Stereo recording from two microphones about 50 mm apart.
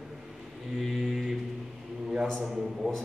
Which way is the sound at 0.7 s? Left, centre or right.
Centre.